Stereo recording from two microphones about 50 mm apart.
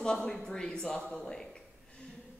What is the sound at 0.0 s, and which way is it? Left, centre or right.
A woman's voice, centre.